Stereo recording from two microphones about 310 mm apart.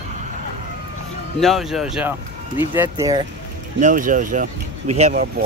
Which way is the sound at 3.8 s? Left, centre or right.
Right.